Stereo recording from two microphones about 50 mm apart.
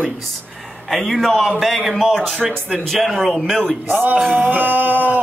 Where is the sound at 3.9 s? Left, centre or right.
Right.